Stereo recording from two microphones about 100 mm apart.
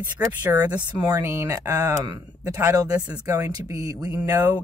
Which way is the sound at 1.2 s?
25° right (ahead or behind).